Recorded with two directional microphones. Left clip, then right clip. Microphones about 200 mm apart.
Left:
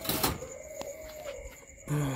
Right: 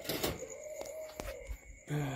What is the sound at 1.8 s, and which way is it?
Cricket, 10° left (ahead or behind).